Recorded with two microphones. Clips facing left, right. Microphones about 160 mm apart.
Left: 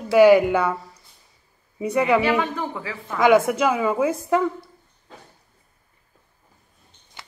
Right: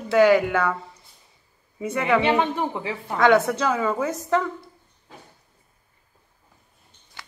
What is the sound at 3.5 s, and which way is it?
Speech, 10° left (ahead or behind).